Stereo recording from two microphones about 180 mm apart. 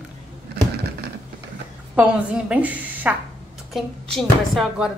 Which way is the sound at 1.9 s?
5° right (ahead or behind).